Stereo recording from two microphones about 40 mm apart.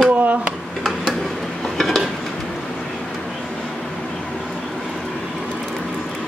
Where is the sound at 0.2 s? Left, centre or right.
Right.